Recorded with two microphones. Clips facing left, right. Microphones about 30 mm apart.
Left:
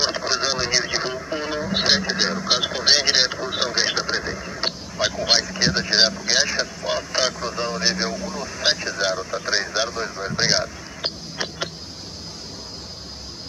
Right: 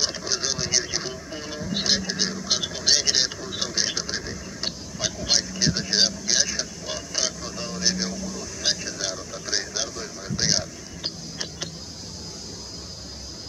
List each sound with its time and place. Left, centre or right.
0.0 s radio: left